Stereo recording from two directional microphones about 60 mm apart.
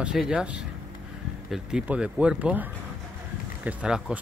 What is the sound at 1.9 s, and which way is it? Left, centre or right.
Speech, centre.